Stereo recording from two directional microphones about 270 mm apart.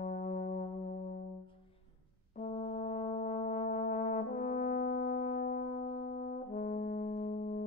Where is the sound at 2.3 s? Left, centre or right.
Left.